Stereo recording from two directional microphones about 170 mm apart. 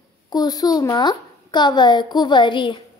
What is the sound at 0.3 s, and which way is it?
A woman's voice, 25° left (ahead or behind).